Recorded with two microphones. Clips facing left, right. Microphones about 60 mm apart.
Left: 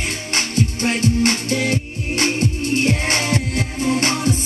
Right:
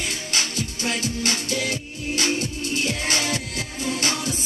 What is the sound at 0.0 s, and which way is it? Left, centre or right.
Music, left.